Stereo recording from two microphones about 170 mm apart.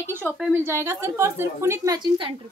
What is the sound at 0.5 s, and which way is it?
A woman's voice, 15° right (ahead or behind).